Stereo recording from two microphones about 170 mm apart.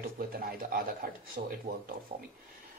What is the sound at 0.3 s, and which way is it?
Speech, 60° right (ahead or behind).